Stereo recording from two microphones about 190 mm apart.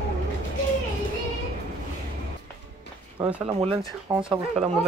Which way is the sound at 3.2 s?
20° right (ahead or behind).